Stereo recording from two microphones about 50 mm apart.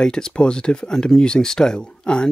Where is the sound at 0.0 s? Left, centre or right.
Centre.